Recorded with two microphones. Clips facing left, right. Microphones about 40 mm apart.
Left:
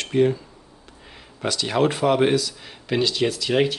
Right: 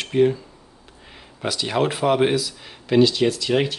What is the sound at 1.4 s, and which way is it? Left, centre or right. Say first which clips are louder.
Speech: left 1 dB; centre.